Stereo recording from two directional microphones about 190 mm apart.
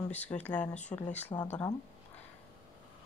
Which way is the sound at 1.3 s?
25° left (ahead or behind).